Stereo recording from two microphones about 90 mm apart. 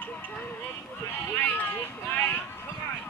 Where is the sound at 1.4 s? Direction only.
20° left (ahead or behind).